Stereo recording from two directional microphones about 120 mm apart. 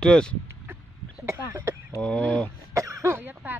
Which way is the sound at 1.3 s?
20° right (ahead or behind).